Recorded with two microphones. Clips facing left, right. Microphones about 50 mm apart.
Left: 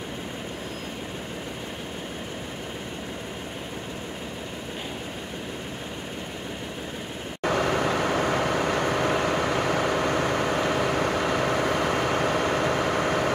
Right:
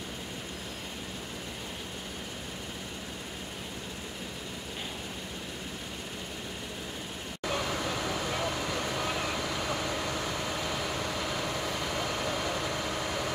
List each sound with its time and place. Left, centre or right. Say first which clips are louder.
7.4 s vehicle: left 9 dB; left